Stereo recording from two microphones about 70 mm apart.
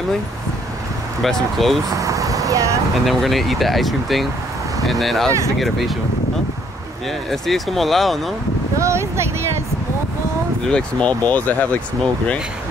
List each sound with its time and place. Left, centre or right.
1.2 s speech: centre
2.0 s vehicle: right
3.1 s speech: centre
7.2 s speech: centre
8.7 s speech: right
10.7 s speech: centre